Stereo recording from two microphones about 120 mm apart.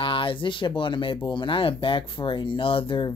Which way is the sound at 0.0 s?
45° left (ahead or behind).